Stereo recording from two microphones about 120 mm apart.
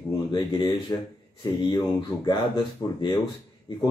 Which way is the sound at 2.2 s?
40° left (ahead or behind).